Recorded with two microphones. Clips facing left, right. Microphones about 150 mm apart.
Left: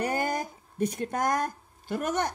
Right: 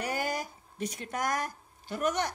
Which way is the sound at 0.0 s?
55° left (ahead or behind).